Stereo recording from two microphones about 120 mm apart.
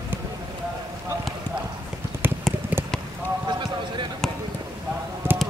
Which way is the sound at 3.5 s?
40° right (ahead or behind).